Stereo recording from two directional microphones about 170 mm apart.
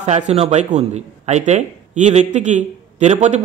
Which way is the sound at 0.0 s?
40° right (ahead or behind).